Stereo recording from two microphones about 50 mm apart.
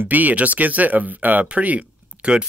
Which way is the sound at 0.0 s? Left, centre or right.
Right.